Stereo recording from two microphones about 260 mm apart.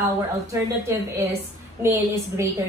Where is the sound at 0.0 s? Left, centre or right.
Centre.